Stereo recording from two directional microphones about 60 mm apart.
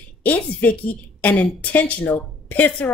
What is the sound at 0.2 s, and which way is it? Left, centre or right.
A woman's voice, left.